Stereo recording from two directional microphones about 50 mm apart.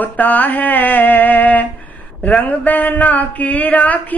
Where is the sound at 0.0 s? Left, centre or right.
Left.